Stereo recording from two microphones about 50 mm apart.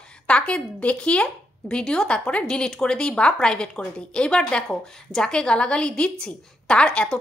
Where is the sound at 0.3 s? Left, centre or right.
Left.